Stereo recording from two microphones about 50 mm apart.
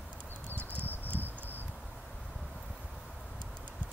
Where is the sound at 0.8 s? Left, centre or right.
Left.